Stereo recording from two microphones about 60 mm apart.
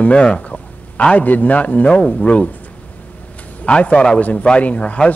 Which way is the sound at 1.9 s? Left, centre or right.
Centre.